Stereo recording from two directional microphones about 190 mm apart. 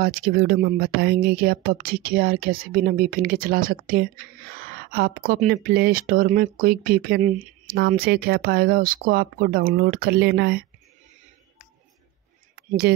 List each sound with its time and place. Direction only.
0.0 s speech: 50° right (ahead or behind)
7.7 s speech: 50° right (ahead or behind)
12.5 s a sound: 55° right (ahead or behind)